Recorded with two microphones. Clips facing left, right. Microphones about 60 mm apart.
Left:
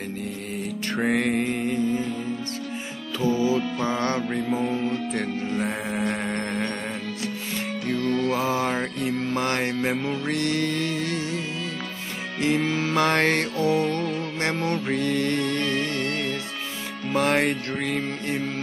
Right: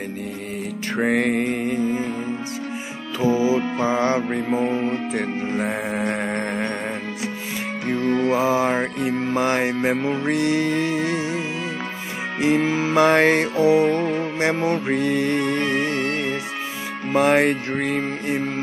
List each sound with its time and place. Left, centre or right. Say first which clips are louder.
1.0 s mantra: right 3 dB; centre
3.2 s music: right 3 dB; centre
4.2 s music: right 3 dB; right
6.0 s music: right 3 dB; right
7.8 s music: right 4 dB; right
12.7 s music: right 5 dB; centre
17.1 s mantra: right 5 dB; centre